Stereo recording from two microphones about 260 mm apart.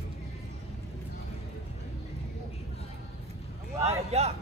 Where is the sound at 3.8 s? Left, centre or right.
Right.